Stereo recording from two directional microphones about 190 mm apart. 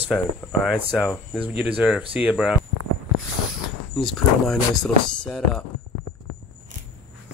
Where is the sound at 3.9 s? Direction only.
Centre (ahead or behind).